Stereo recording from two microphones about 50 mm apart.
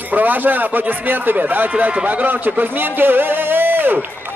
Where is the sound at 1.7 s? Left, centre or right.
Right.